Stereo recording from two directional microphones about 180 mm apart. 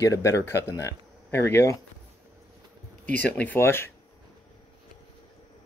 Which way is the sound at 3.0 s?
10° left (ahead or behind).